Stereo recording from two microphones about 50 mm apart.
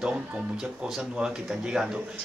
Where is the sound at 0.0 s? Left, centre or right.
Centre.